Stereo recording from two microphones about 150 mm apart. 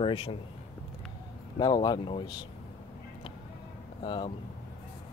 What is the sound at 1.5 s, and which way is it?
Speech, 30° left (ahead or behind).